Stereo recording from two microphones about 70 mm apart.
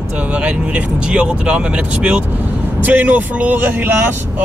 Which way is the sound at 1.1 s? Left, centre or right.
Centre.